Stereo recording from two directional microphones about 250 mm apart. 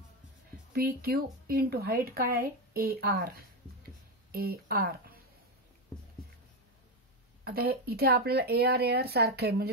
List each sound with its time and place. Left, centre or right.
0.7 s speech: right
7.4 s speech: right